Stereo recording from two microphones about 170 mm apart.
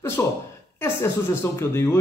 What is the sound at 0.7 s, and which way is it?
A man's voice, 15° left (ahead or behind).